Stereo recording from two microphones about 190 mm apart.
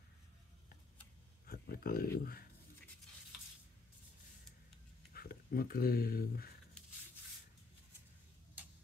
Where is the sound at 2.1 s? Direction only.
50° left (ahead or behind).